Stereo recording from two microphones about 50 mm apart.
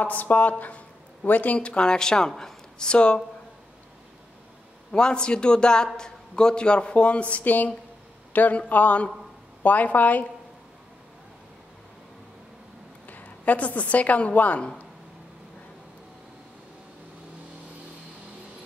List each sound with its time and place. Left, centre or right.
0.0 s speech: left
4.9 s speech: centre; by 10.2 s left
13.0 s a woman's voice: left